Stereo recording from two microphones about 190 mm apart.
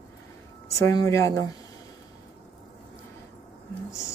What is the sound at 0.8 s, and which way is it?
Speech, 15° left (ahead or behind).